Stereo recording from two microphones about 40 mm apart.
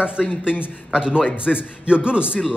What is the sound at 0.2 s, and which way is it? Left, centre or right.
Speech, centre.